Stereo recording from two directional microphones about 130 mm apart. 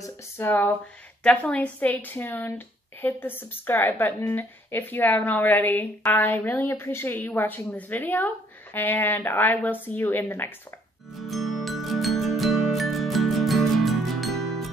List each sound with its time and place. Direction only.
0.0 s a woman's voice: 15° left (ahead or behind)
11.1 s music: centre (ahead or behind)